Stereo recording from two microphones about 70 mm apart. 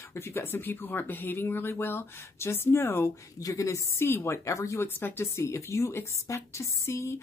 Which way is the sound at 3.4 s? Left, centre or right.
Left.